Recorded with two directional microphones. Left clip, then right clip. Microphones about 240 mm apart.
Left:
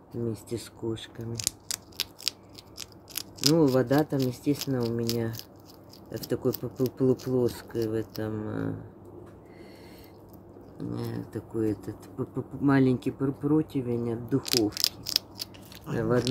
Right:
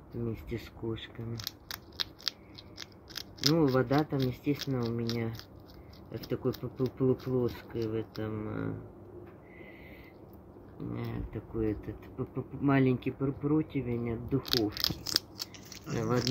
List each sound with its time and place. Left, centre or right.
0.1 s speech: centre
10.9 s speech: centre
15.9 s speech: centre